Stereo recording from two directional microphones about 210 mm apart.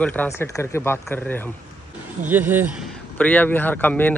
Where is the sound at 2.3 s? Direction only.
10° right (ahead or behind).